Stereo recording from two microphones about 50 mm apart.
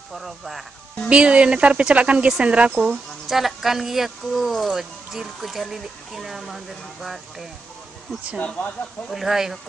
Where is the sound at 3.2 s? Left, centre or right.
Centre.